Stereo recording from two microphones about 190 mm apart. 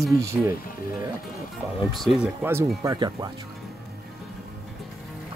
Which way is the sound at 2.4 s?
15° right (ahead or behind).